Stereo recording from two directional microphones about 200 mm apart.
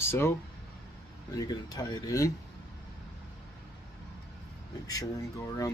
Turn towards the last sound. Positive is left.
turn(degrees=15)  # may be behind; listen again after turning